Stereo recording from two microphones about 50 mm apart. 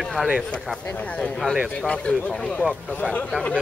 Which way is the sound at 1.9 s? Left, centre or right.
Centre.